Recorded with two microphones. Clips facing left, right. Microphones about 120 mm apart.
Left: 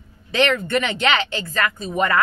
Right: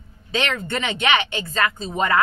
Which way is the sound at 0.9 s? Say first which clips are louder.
Even; 25° right (ahead or behind).